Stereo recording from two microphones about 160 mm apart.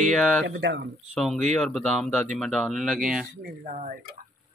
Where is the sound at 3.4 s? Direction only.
55° right (ahead or behind).